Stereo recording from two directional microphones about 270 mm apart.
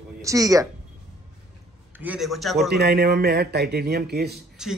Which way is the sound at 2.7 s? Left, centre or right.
Right.